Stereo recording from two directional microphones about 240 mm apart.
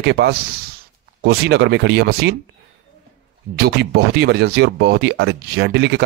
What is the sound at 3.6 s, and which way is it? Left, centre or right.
Speech, right.